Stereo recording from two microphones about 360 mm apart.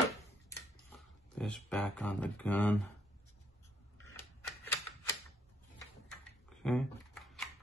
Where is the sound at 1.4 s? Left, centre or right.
Centre.